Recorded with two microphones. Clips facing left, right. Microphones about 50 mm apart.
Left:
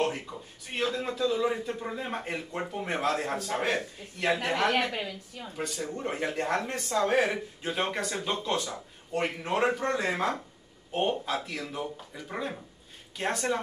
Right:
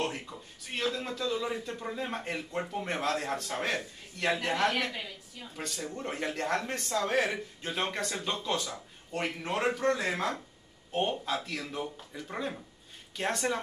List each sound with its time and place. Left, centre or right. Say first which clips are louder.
0.0 s a man's voice: left 4 dB; centre
4.6 s a woman's voice: left 3 dB; left
5.8 s a man's voice: left 2 dB; centre